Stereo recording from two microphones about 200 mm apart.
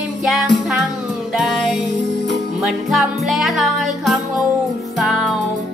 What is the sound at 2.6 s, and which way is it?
Music, centre (ahead or behind).